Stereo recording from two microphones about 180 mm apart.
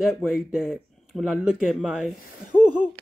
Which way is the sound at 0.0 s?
Centre (ahead or behind).